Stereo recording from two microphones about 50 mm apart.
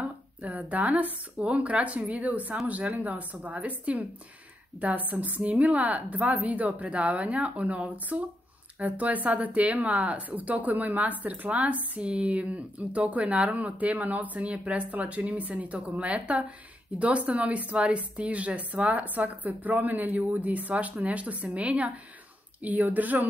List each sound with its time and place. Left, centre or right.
0.4 s a woman's voice: right